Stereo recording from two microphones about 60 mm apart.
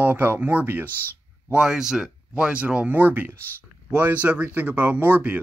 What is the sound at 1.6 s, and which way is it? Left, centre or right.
Speech, centre.